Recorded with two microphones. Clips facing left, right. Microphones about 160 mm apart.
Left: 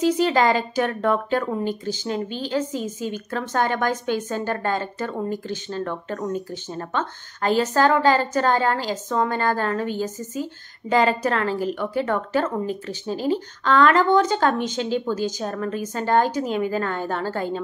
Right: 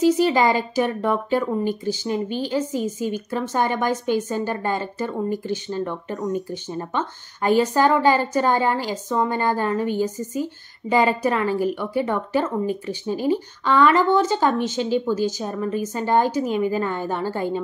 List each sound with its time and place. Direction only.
0.2 s speech: 10° right (ahead or behind)
2.2 s a woman's voice: 50° right (ahead or behind)
3.3 s speech: 10° right (ahead or behind)